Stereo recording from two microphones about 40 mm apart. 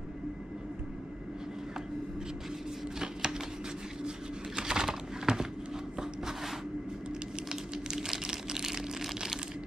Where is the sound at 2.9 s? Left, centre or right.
Centre.